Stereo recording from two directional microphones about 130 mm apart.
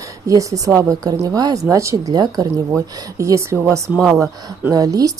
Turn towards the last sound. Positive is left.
turn(degrees=-30)  # may be behind; listen again after turning